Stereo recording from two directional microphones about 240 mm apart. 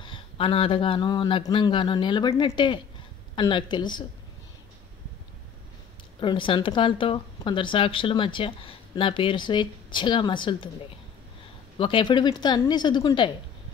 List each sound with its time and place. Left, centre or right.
0.0 s speech: left
6.1 s speech: left
11.8 s speech: centre